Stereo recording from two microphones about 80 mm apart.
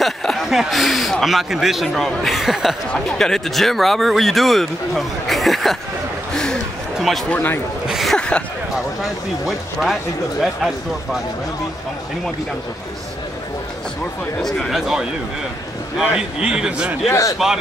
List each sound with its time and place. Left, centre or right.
0.0 s speech: centre
2.9 s speech: centre
6.3 s a sound: centre
7.0 s speech: centre
7.2 s speech: left
7.9 s a sound: centre
8.2 s a sound: centre
9.0 s speech: centre
14.4 s a man's voice: centre
17.1 s a man's voice: left